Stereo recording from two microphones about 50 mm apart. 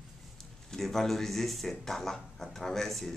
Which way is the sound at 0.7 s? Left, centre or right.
Centre.